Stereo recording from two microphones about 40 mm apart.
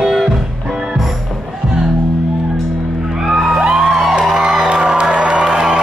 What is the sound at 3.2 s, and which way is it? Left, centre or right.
Music, centre.